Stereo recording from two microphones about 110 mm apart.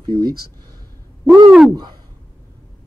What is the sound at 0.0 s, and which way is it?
Speech, 40° right (ahead or behind).